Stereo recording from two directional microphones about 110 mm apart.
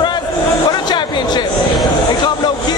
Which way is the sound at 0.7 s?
40° left (ahead or behind).